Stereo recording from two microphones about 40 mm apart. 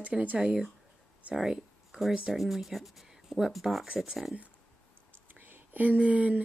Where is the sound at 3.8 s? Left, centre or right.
Centre.